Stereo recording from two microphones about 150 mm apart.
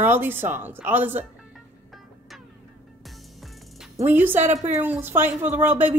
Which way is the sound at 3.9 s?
15° right (ahead or behind).